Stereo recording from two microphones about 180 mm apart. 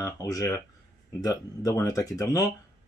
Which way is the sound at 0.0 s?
20° left (ahead or behind).